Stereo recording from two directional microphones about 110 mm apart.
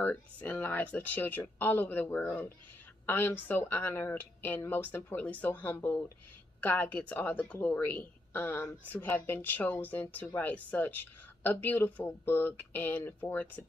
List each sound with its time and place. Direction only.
0.0 s a woman's voice: 15° left (ahead or behind)